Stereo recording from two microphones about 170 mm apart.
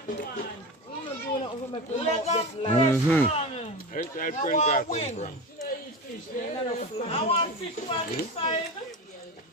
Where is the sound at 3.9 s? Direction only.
55° left (ahead or behind).